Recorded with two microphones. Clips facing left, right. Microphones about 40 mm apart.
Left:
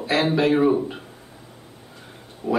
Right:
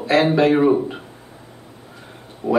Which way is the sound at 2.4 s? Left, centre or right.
Right.